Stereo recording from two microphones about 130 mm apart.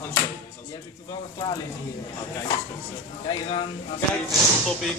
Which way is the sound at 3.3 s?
40° left (ahead or behind).